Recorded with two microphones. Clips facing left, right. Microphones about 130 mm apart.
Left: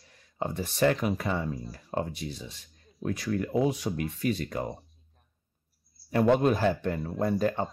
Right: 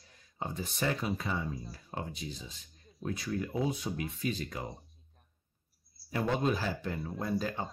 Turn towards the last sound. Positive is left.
turn(degrees=55)  # may be behind; listen again after turning